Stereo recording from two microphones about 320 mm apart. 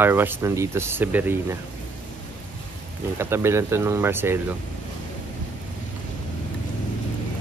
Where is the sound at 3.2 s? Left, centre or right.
Centre.